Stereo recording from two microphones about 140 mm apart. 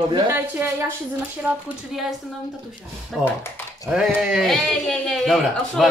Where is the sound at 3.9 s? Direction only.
5° right (ahead or behind).